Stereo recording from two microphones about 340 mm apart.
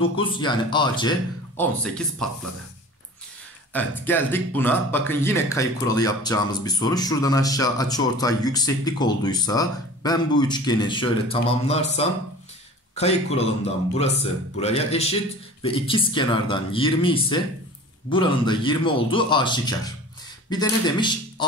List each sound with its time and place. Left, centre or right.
0.0 s speech: centre
1.6 s speech: centre
3.7 s speech: centre
14.6 s a man's voice: centre